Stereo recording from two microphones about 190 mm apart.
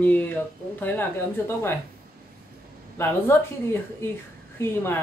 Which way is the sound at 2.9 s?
10° left (ahead or behind).